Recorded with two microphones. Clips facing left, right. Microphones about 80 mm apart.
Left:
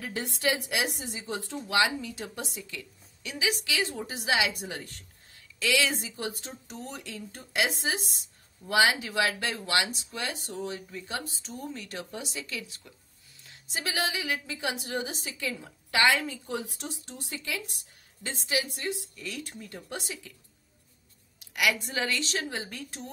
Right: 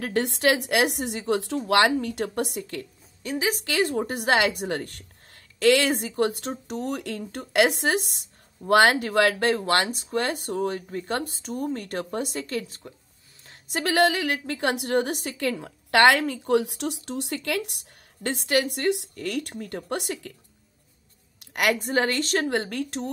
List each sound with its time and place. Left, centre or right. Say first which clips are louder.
0.0 s speech: right 8 dB; right
21.4 s a sound: right 4 dB; right
21.8 s speech: right 7 dB; right